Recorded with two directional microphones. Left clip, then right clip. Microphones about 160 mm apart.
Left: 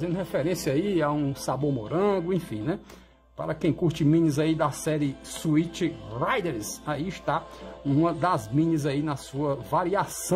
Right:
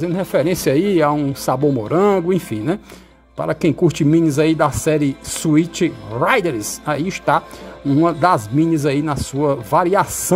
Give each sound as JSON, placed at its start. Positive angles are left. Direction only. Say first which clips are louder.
{"t": 0.0, "sound": "speech", "louder": "right 10 dB", "side_deg": -30}
{"t": 1.5, "sound": "speech", "louder": "right 12 dB", "side_deg": -35}